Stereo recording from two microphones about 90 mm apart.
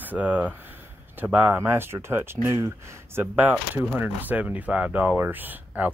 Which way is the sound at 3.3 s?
20° right (ahead or behind).